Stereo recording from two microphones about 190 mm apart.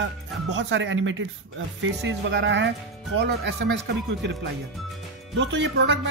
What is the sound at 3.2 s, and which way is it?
Music, 60° right (ahead or behind).